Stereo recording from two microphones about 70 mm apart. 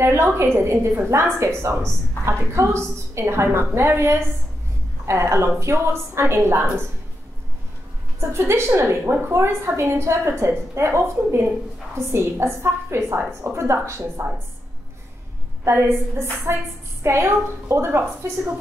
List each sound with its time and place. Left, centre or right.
0.0 s a woman's voice: right
8.2 s a woman's voice: right
15.6 s a woman's voice: right